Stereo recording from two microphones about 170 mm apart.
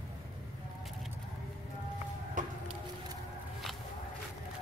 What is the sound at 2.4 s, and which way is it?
Music, 50° right (ahead or behind).